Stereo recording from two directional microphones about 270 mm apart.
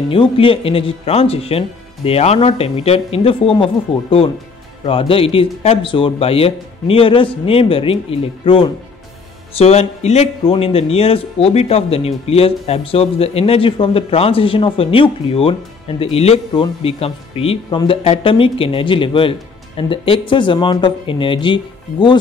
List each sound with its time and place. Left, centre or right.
0.1 s a man's voice: centre